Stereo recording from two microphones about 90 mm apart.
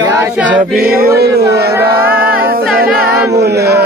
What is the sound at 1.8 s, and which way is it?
Music, 20° right (ahead or behind).